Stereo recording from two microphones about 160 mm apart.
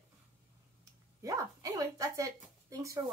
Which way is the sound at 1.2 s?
20° right (ahead or behind).